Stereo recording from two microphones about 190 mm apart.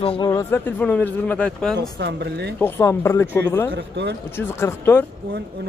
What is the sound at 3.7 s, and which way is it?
Speech, 65° right (ahead or behind).